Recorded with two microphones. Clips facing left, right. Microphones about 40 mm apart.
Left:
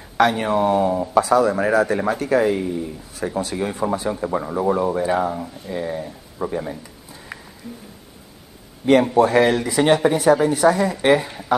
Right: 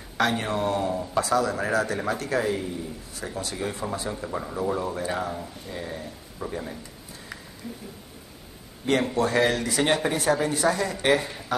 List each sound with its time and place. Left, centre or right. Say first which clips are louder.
0.2 s speech: left 7 dB; left
8.8 s speech: left 9 dB; left